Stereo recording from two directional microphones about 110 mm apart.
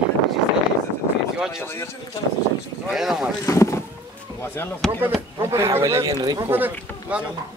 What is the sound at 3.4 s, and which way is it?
Speech, 25° left (ahead or behind).